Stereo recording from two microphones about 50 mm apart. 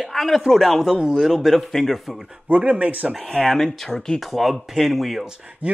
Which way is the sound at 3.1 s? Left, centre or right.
Centre.